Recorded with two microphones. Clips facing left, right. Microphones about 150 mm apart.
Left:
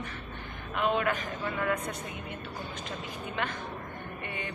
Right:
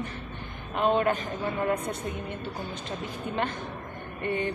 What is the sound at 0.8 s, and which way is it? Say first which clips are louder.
Speech: right 4 dB; 35° right (ahead or behind).